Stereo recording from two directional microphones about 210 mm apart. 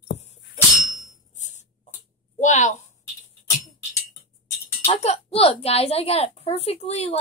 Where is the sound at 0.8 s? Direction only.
35° left (ahead or behind).